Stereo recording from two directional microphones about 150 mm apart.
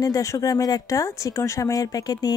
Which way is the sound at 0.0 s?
20° left (ahead or behind).